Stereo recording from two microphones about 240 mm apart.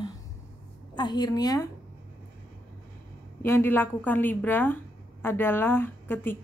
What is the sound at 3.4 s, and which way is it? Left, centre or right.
A woman's voice, centre.